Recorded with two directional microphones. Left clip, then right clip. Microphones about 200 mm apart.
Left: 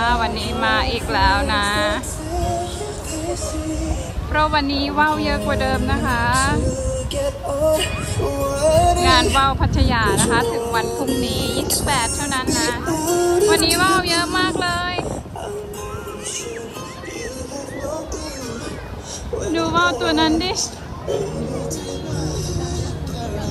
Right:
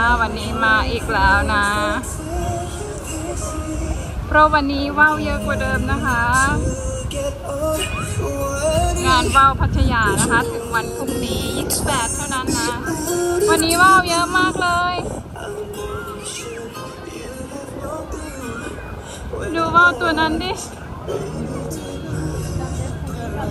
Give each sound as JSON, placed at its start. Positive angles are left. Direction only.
{"t": 0.0, "sound": "speech", "side_deg": 10}
{"t": 4.3, "sound": "speech", "side_deg": 5}
{"t": 7.8, "sound": "music", "side_deg": 50}
{"t": 9.0, "sound": "speech", "side_deg": 10}
{"t": 12.9, "sound": "music", "side_deg": 0}
{"t": 19.5, "sound": "speech", "side_deg": 10}